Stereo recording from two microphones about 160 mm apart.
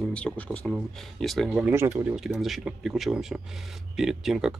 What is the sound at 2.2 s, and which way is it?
Speech, centre (ahead or behind).